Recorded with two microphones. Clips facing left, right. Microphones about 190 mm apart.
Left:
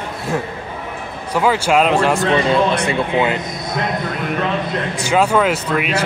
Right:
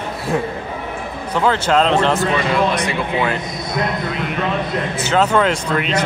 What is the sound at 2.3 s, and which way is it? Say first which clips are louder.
A man's voice: left 2 dB; 25° left (ahead or behind).